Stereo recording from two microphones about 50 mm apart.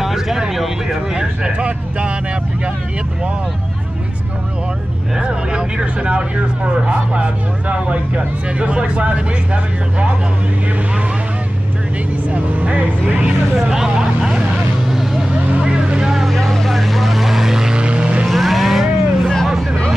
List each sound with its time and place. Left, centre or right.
0.0 s speech: centre; by 2.1 s right
5.2 s speech: centre
12.3 s speech: right
13.6 s speech: centre
14.9 s vehicle: centre
15.2 s vehicle: centre
16.3 s vehicle: centre
17.8 s vehicle: right
18.2 s vehicle: centre
19.4 s a sound: centre